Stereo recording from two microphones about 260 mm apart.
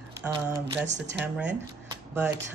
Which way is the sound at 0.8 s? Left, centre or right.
Right.